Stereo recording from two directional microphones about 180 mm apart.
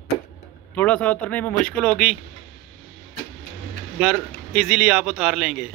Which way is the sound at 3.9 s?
Centre (ahead or behind).